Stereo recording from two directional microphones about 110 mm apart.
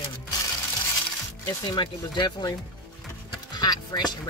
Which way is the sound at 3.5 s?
40° left (ahead or behind).